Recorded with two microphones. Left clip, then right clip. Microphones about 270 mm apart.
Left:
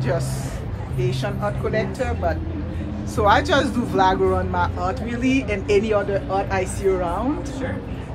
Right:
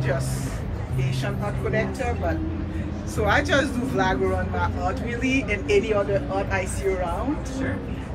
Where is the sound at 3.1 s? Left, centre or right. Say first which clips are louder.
Left 4 dB; centre.